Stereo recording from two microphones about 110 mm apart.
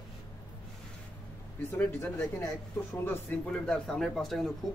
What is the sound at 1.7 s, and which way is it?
Speech, 20° left (ahead or behind).